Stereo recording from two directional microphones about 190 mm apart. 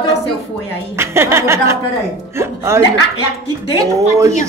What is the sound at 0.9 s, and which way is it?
A woman's voice, 15° right (ahead or behind).